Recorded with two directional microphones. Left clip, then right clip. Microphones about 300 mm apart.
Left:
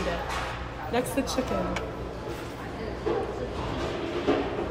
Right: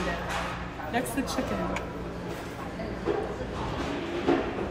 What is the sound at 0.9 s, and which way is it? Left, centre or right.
Speech, centre.